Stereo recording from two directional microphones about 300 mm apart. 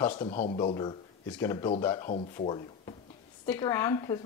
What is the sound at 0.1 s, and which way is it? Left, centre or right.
Speech, left.